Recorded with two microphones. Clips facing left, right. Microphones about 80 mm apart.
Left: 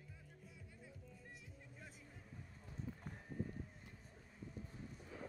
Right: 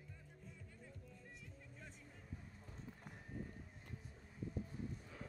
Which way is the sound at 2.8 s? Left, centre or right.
Centre.